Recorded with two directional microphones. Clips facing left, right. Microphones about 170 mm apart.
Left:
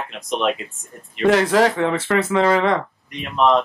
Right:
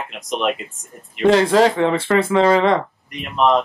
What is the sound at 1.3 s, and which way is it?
Speech, 25° right (ahead or behind).